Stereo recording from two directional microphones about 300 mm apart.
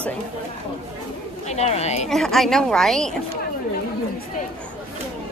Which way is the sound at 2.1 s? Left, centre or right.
Centre.